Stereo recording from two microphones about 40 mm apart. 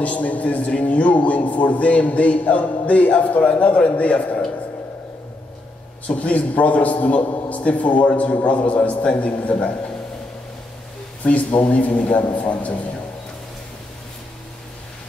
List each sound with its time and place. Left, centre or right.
0.0 s a man's voice: left
6.0 s a man's voice: left
11.2 s a man's voice: left